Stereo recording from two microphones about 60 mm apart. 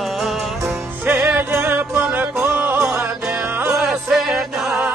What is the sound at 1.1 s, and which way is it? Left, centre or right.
Music, right.